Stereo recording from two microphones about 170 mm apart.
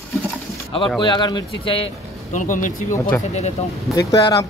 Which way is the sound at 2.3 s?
50° left (ahead or behind).